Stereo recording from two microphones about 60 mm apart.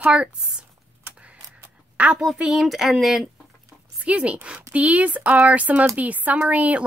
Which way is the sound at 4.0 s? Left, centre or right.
Right.